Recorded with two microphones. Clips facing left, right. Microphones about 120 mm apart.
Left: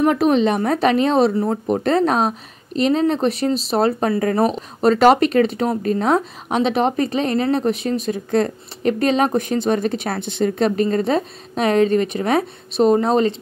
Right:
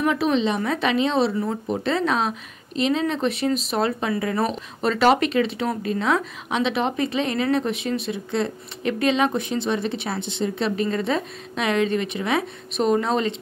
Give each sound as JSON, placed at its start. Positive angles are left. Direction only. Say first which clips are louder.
{"t": 0.0, "sound": "a woman's voice", "louder": "left 5 dB", "side_deg": 45}